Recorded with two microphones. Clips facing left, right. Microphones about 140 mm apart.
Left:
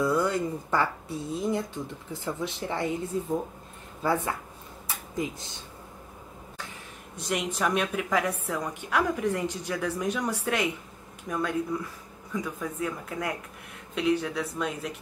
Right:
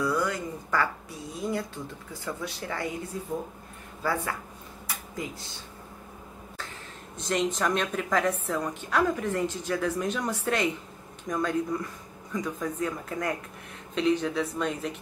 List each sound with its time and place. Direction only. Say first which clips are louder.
0.0 s speech: left 3 dB; 25° left (ahead or behind)
4.8 s a sound: left 4 dB; 20° left (ahead or behind)
7.2 s speech: right 2 dB; 10° left (ahead or behind)